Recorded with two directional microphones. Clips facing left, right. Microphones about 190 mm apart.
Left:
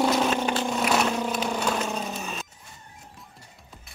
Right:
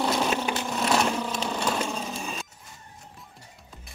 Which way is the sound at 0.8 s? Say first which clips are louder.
Right 1 dB; 5° left (ahead or behind).